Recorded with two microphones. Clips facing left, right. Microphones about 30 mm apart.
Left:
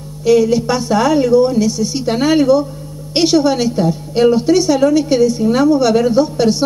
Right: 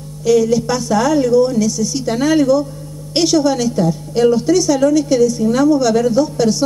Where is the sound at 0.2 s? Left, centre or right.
Left.